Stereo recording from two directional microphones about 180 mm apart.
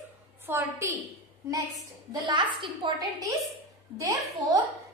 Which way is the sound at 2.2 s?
25° right (ahead or behind).